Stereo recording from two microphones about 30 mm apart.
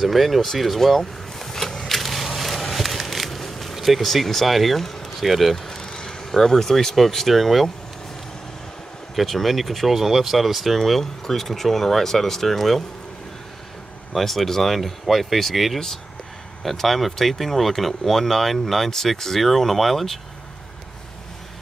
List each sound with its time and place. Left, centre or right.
0.0 s speech: centre
1.8 s a sound: centre
5.2 s speech: centre
5.6 s vehicle: centre
5.9 s vehicle: left
7.0 s speech: centre
9.1 s speech: centre
10.8 s speech: centre
14.1 s speech: centre
18.9 s speech: centre